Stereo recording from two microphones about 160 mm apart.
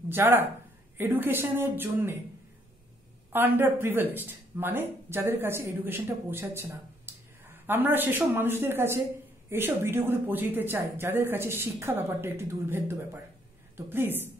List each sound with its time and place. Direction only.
0.1 s speech: 15° right (ahead or behind)
3.3 s speech: 10° right (ahead or behind)
7.1 s a sound: 15° right (ahead or behind)
7.6 s speech: 10° right (ahead or behind)